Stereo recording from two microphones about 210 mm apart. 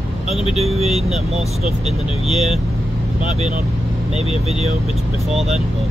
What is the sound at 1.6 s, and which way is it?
Speech, 5° right (ahead or behind).